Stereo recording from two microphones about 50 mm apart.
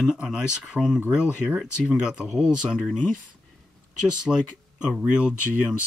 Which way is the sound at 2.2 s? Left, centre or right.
Centre.